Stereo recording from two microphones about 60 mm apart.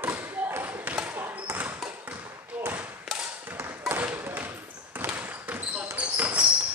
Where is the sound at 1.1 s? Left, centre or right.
Right.